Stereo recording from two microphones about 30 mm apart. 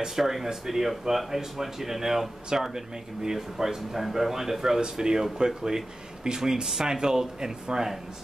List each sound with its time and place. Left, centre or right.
0.2 s speech: centre